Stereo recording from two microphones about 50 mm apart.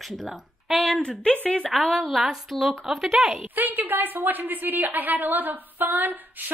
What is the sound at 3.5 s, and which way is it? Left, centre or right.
A woman's voice, right.